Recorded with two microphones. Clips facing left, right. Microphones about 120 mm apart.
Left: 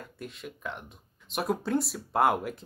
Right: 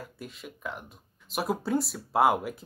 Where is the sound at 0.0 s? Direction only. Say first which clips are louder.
Left 1 dB; 5° right (ahead or behind).